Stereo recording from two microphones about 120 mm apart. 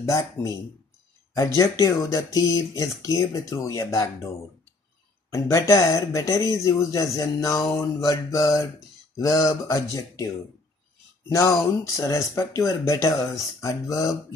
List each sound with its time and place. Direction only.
0.0 s speech: 30° left (ahead or behind)
5.3 s speech: 25° left (ahead or behind)